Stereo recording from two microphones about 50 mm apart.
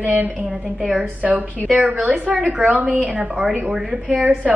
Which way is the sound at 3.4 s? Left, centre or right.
Centre.